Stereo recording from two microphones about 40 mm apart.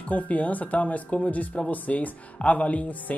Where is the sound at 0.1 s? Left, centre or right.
Left.